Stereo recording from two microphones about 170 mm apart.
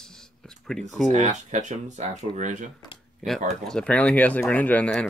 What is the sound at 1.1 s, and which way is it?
Speech, 45° right (ahead or behind).